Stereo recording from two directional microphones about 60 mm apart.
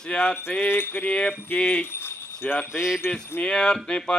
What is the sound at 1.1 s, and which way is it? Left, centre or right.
Mantra, centre.